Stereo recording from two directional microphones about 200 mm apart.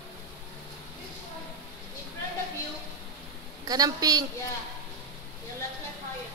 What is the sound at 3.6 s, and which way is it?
Speech, 20° right (ahead or behind).